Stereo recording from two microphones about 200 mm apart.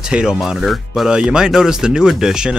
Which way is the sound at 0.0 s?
5° right (ahead or behind).